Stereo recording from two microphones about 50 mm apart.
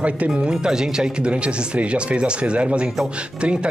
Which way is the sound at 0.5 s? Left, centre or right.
Centre.